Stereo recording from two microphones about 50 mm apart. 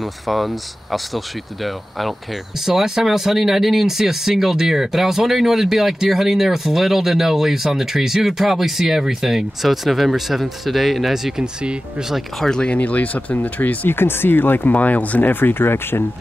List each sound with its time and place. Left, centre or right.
0.0 s speech: centre
12.4 s speech: centre
12.6 s speech: left